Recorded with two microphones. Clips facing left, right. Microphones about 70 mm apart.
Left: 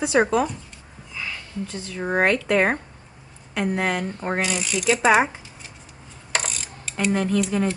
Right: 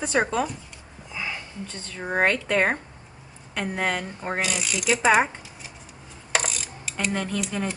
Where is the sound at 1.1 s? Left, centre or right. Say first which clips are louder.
Right 1 dB; centre.